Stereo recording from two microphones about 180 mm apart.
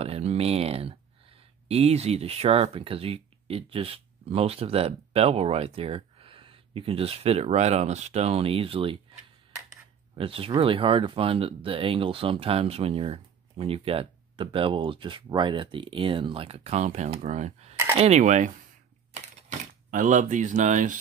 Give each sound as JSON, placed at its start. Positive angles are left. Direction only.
{"t": 0.0, "sound": "speech", "side_deg": -35}
{"t": 10.1, "sound": "speech", "side_deg": -30}
{"t": 19.9, "sound": "speech", "side_deg": -45}